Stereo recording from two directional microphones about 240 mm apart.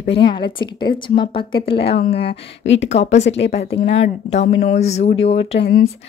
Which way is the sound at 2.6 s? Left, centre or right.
Left.